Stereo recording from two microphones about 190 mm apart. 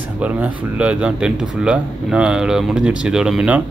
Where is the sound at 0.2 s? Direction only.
5° right (ahead or behind).